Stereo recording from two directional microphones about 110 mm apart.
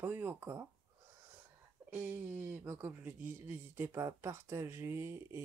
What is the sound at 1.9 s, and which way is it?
Speech, 20° right (ahead or behind).